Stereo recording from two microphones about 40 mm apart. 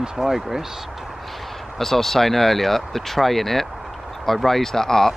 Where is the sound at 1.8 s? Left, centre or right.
Centre.